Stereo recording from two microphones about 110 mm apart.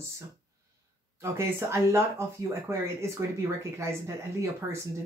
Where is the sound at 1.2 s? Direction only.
25° right (ahead or behind).